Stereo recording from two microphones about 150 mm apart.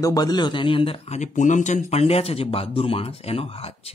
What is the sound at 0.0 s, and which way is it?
Speech, 25° left (ahead or behind).